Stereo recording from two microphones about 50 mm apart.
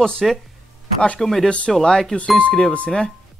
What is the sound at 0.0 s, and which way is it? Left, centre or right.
A woman's voice, centre.